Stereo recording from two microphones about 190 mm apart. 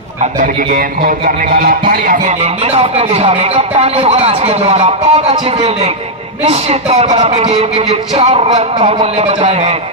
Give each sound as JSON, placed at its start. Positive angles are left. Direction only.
{"t": 0.2, "sound": "a man's voice", "side_deg": -45}
{"t": 2.4, "sound": "a man's voice", "side_deg": -30}